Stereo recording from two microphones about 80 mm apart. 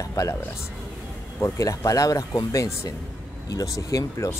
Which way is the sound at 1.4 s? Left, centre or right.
Left.